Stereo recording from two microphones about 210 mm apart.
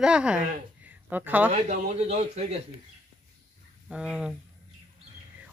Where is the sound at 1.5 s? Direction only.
30° right (ahead or behind).